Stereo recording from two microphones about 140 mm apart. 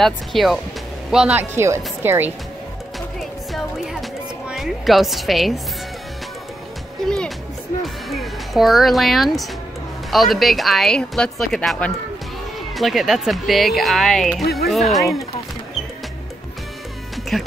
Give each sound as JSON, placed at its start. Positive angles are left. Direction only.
{"t": 0.0, "sound": "speech", "side_deg": 0}
{"t": 1.6, "sound": "speech", "side_deg": -20}
{"t": 3.2, "sound": "music", "side_deg": 0}
{"t": 4.5, "sound": "speech", "side_deg": 0}
{"t": 7.1, "sound": "music", "side_deg": 5}
{"t": 10.1, "sound": "speech", "side_deg": 0}
{"t": 17.3, "sound": "speech", "side_deg": 0}